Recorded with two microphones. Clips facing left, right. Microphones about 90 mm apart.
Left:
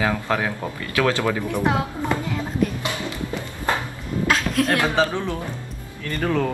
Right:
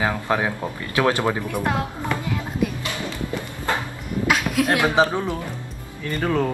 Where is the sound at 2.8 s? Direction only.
20° left (ahead or behind).